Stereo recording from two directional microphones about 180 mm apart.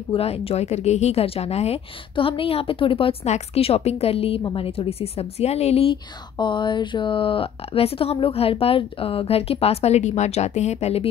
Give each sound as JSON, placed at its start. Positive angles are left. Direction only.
{"t": 0.1, "sound": "a woman's voice", "side_deg": 35}